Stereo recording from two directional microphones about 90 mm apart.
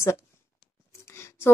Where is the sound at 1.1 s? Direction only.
30° left (ahead or behind).